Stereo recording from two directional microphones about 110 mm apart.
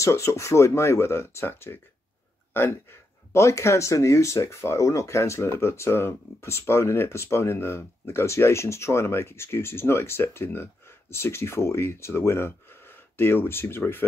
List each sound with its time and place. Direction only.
0.0 s speech: 25° left (ahead or behind)